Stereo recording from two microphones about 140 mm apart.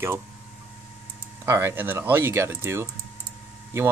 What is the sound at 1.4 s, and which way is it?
Speech, 15° right (ahead or behind).